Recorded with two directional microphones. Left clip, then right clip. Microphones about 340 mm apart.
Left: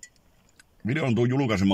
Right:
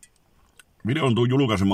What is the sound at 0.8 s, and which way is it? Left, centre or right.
Speech, right.